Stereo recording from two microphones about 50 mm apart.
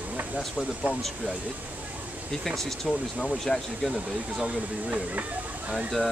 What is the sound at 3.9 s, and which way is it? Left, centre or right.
Speech, centre.